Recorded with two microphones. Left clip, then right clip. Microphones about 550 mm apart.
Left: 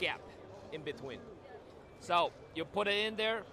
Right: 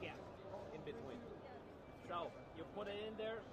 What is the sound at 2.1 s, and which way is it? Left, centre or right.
Speech, left.